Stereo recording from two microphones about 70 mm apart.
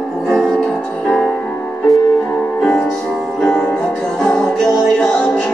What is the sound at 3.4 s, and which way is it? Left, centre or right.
Music, centre.